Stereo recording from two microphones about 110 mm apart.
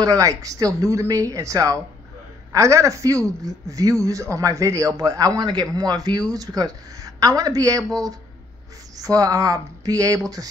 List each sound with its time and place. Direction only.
0.0 s a man's voice: 30° right (ahead or behind)